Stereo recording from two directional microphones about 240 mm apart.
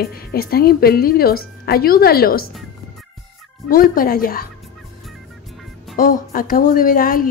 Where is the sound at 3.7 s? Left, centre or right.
Left.